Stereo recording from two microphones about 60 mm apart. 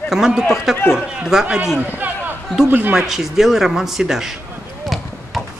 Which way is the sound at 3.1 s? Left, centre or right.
Centre.